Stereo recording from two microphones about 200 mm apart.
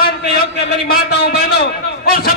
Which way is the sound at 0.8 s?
50° left (ahead or behind).